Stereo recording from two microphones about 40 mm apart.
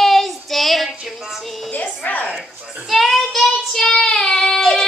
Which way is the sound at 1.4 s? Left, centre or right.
Centre.